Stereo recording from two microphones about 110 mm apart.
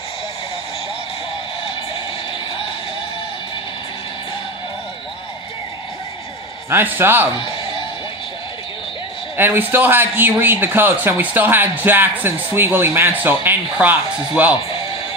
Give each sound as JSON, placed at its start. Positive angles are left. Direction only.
{"t": 6.7, "sound": "a man's voice", "side_deg": -20}
{"t": 9.4, "sound": "a man's voice", "side_deg": -20}